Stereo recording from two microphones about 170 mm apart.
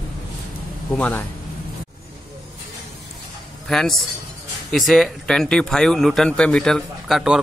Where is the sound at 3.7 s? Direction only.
Centre (ahead or behind).